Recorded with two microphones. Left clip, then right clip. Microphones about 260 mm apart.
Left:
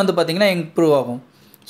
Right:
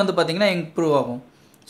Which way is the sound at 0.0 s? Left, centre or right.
Centre.